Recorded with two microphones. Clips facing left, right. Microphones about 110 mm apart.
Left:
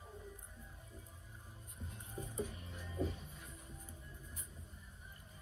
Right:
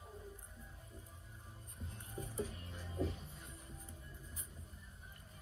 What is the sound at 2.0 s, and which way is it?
Music, 15° left (ahead or behind).